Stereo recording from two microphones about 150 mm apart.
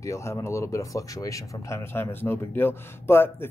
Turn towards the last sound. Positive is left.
turn(degrees=15)  # may be behind; listen again after turning